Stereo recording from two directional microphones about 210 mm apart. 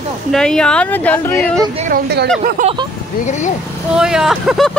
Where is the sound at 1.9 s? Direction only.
50° right (ahead or behind).